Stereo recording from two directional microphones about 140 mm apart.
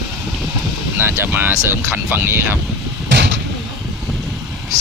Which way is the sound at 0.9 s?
15° right (ahead or behind).